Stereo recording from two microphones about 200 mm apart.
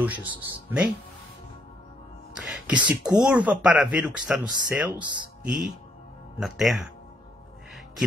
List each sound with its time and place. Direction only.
0.0 s speech: 10° right (ahead or behind)
2.3 s speech: centre (ahead or behind)